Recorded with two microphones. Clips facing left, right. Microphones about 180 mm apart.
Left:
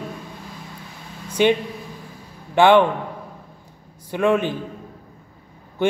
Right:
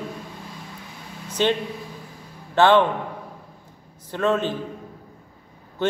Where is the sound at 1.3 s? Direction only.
10° left (ahead or behind).